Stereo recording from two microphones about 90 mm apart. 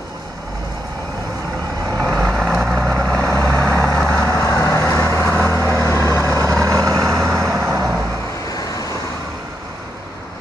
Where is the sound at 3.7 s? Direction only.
30° left (ahead or behind).